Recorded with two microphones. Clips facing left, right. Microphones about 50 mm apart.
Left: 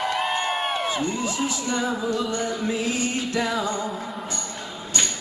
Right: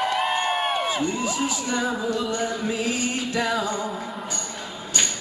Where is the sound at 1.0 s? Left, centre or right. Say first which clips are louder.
Right 1 dB; centre.